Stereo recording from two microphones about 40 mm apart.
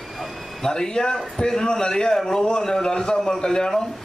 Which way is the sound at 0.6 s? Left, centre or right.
Centre.